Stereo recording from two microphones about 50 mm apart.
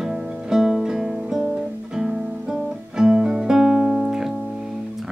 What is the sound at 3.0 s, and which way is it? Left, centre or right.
Music, centre.